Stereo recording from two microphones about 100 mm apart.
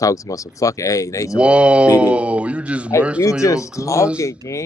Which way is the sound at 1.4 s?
10° right (ahead or behind).